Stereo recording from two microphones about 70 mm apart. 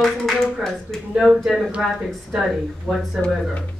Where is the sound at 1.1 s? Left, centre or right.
Centre.